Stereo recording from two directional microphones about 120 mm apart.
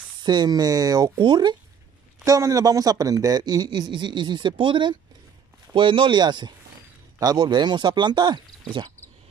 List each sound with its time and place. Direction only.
0.2 s a man's voice: 35° right (ahead or behind)
2.2 s a man's voice: 30° right (ahead or behind)